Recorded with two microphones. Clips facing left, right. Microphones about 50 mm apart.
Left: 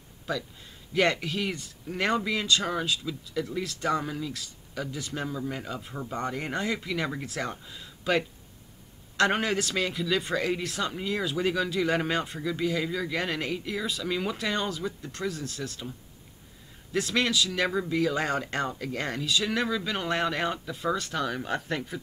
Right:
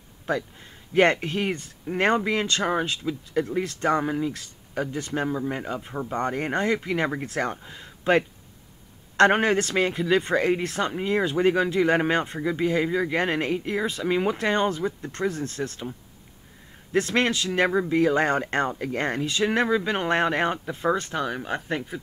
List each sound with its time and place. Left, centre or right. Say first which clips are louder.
0.3 s speech: right 5 dB; right
16.9 s speech: right 4 dB; right
21.1 s speech: right 2 dB; centre